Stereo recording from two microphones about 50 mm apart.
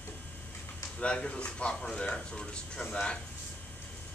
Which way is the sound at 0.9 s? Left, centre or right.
Centre.